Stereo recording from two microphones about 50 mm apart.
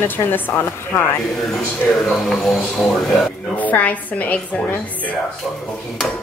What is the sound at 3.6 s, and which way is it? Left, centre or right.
Speech, left.